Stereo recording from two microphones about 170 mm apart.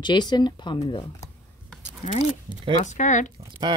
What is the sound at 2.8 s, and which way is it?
Speech, 45° left (ahead or behind).